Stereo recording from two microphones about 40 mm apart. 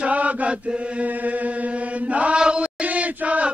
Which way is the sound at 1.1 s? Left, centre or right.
Right.